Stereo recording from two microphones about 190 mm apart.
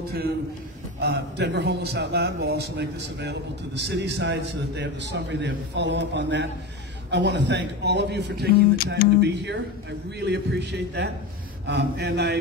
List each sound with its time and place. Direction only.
1.0 s a man's voice: 60° right (ahead or behind)